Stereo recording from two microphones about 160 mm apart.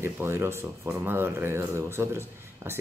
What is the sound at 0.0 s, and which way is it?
Speech, 15° right (ahead or behind).